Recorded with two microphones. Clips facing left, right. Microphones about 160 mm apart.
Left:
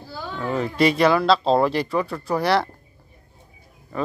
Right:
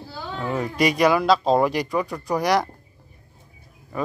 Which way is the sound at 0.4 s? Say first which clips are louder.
Left 2 dB; 10° right (ahead or behind).